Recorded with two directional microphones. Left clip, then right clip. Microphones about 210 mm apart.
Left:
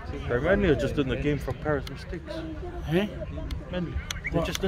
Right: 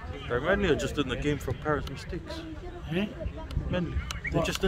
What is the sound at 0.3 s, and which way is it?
Speech, 15° right (ahead or behind).